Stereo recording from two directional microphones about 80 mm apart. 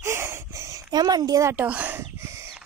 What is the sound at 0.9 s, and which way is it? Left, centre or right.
Speech, right.